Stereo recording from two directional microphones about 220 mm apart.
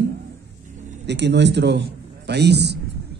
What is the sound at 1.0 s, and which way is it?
A man's voice, 50° right (ahead or behind).